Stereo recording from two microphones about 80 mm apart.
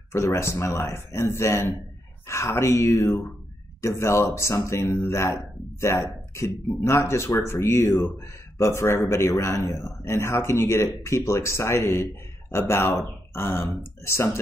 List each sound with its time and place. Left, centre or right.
0.1 s a man's voice: left